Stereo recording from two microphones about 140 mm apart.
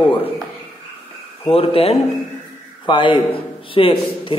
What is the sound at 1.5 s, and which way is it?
A man's voice, 40° left (ahead or behind).